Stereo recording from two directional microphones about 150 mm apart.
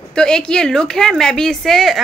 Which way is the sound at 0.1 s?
5° left (ahead or behind).